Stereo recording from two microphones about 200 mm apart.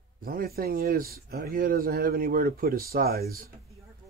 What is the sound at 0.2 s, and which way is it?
Speech, 45° right (ahead or behind).